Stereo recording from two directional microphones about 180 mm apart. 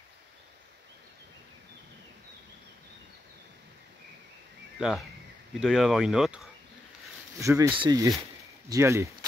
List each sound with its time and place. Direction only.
4.7 s speech: centre (ahead or behind)
7.3 s speech: 15° right (ahead or behind)